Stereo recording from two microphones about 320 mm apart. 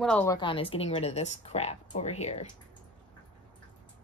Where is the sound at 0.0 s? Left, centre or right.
Centre.